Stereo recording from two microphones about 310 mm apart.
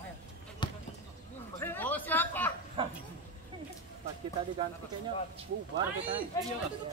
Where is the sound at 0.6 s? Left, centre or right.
Centre.